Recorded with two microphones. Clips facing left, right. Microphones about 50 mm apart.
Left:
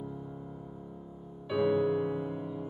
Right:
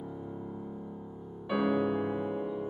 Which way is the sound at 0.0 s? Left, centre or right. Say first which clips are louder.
Right 2 dB; centre.